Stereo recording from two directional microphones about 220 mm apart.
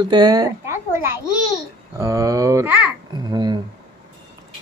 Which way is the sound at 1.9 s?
15° right (ahead or behind).